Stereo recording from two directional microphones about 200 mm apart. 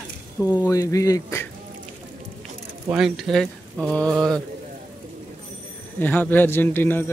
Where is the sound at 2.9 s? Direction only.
Centre (ahead or behind).